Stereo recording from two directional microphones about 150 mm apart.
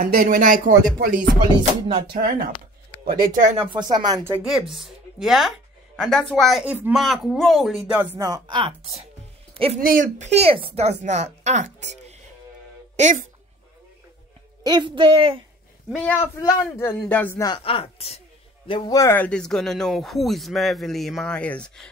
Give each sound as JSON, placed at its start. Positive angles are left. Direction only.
{"t": 0.0, "sound": "speech", "side_deg": -80}
{"t": 3.5, "sound": "speech", "side_deg": -30}
{"t": 4.4, "sound": "speech", "side_deg": -5}
{"t": 7.0, "sound": "speech", "side_deg": 0}
{"t": 8.3, "sound": "a woman's voice", "side_deg": -30}
{"t": 9.5, "sound": "a sound", "side_deg": -40}
{"t": 9.8, "sound": "a woman's voice", "side_deg": -65}
{"t": 14.6, "sound": "a woman's voice", "side_deg": -30}
{"t": 16.0, "sound": "speech", "side_deg": 15}
{"t": 17.6, "sound": "speech", "side_deg": 40}
{"t": 18.7, "sound": "speech", "side_deg": 20}